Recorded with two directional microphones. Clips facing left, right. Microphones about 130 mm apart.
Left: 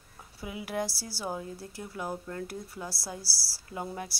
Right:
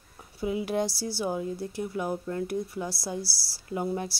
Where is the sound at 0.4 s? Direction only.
25° right (ahead or behind).